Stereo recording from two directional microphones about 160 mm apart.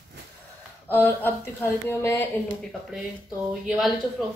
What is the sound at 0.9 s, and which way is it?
Speech, 10° left (ahead or behind).